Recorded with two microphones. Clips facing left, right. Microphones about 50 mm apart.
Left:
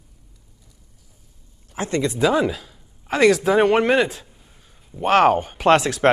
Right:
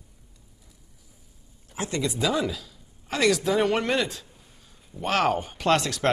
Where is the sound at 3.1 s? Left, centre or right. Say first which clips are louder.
Left 7 dB; centre.